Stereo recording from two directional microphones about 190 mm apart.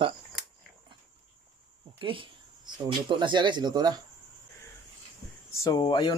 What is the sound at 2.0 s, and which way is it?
Speech, 25° right (ahead or behind).